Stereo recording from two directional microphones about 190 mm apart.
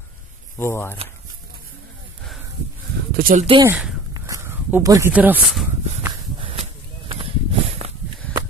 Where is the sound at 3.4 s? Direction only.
25° right (ahead or behind).